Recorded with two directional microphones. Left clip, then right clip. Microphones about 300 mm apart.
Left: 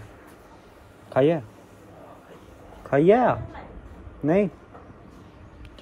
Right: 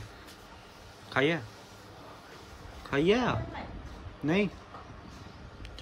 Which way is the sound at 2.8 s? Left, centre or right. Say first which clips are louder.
Left 9 dB; centre.